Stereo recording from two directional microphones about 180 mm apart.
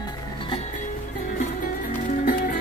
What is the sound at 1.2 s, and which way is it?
Music, 45° left (ahead or behind).